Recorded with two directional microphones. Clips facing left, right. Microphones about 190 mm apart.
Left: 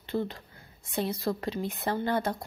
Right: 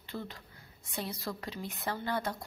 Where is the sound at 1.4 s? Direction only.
25° left (ahead or behind).